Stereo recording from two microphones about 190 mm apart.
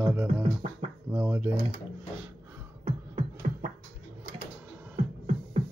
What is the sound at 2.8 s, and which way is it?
Music, 35° right (ahead or behind).